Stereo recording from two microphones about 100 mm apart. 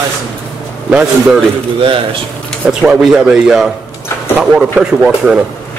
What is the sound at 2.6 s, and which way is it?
Speech, 10° right (ahead or behind).